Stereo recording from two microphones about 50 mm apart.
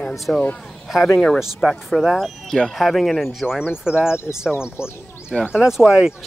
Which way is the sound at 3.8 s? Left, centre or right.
Centre.